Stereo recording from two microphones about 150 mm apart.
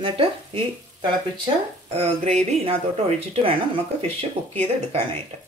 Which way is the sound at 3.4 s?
35° right (ahead or behind).